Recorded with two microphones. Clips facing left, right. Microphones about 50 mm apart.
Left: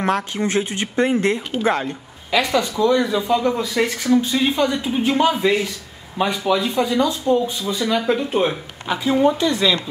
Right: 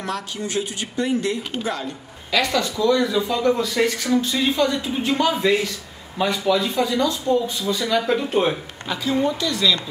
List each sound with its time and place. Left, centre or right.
0.0 s speech: left
2.3 s speech: centre
8.8 s speech: centre